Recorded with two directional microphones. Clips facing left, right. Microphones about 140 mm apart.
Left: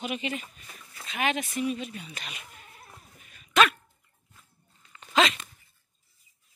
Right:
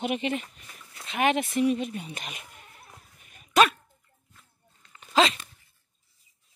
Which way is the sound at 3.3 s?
50° right (ahead or behind).